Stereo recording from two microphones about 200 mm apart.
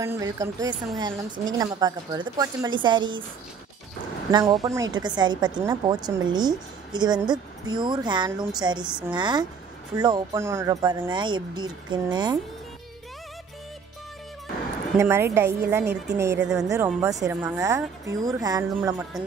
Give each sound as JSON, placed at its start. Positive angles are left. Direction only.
{"t": 0.0, "sound": "a woman's voice", "side_deg": -15}
{"t": 4.3, "sound": "a woman's voice", "side_deg": -20}
{"t": 15.0, "sound": "speech", "side_deg": -15}